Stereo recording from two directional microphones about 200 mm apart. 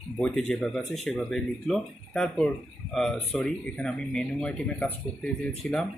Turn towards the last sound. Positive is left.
turn(degrees=0)  # may be behind; listen again after turning